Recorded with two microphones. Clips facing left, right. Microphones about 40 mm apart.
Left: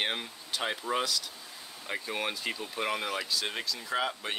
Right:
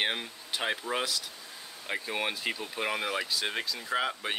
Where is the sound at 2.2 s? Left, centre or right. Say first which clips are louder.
Right 2 dB; centre.